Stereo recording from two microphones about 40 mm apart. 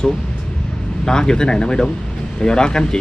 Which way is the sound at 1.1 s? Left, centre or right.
Centre.